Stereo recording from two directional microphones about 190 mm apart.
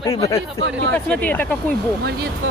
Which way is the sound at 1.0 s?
5° left (ahead or behind).